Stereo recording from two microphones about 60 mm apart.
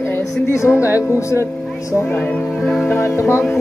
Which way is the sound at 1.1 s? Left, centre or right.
Left.